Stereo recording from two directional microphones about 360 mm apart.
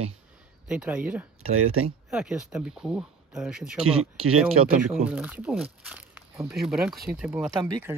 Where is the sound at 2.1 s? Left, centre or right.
Centre.